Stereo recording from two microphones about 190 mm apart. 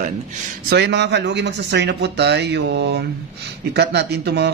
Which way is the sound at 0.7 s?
65° right (ahead or behind).